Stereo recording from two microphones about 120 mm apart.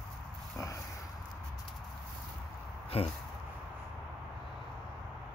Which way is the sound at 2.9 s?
55° left (ahead or behind).